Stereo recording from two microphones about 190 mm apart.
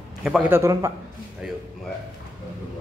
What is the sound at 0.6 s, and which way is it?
Speech, 15° right (ahead or behind).